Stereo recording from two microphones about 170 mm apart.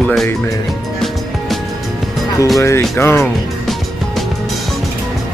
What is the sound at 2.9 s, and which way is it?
Speech, 15° left (ahead or behind).